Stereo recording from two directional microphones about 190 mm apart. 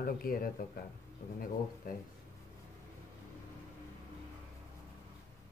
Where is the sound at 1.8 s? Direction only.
50° left (ahead or behind).